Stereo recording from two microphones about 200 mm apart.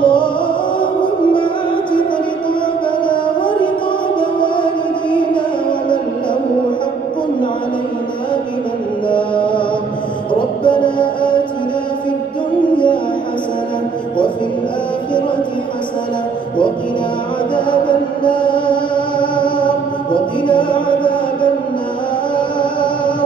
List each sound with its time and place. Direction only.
0.0 s music: 25° left (ahead or behind)
1.3 s music: 25° left (ahead or behind)
3.1 s music: 25° left (ahead or behind)
9.1 s mantra: 25° left (ahead or behind)
10.6 s music: 25° left (ahead or behind)
17.6 s mantra: 25° left (ahead or behind)
20.4 s music: 25° left (ahead or behind)
22.6 s music: 25° left (ahead or behind)